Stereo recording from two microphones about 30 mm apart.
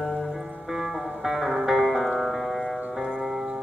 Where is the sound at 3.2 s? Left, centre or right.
Centre.